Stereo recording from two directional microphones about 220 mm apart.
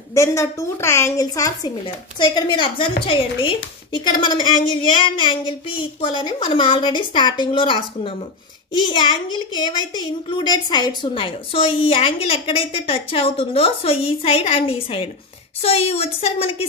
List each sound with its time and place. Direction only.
0.1 s a woman's voice: 15° left (ahead or behind)